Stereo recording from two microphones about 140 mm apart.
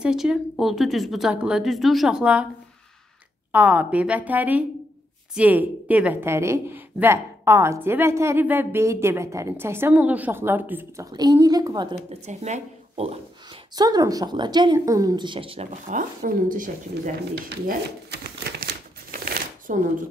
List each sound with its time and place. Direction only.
0.0 s a woman's voice: 5° right (ahead or behind)
3.5 s a woman's voice: 10° right (ahead or behind)
11.1 s a woman's voice: 25° right (ahead or behind)
12.1 s speech: 55° right (ahead or behind)
13.7 s speech: 25° right (ahead or behind)
15.9 s speech: 70° right (ahead or behind)
19.2 s shuffling cards: 85° right